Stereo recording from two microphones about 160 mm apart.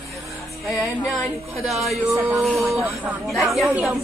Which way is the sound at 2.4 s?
Centre (ahead or behind).